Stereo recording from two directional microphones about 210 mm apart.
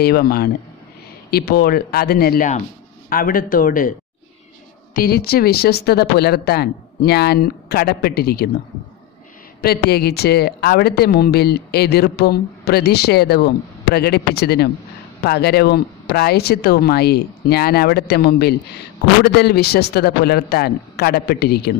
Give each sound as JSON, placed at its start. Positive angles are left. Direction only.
{"t": 0.0, "sound": "speech", "side_deg": 45}
{"t": 4.9, "sound": "speech", "side_deg": 45}
{"t": 9.6, "sound": "speech", "side_deg": 50}